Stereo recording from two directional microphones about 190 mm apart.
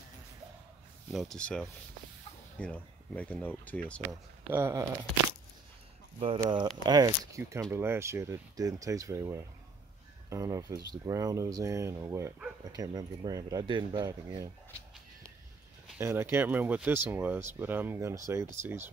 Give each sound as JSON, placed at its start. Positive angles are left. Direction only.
{"t": 1.1, "sound": "speech", "side_deg": 0}
{"t": 4.5, "sound": "speech", "side_deg": -15}
{"t": 6.1, "sound": "speech", "side_deg": -25}
{"t": 16.0, "sound": "speech", "side_deg": -15}